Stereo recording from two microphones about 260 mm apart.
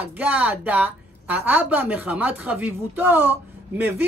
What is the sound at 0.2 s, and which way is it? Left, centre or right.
A woman's voice, centre.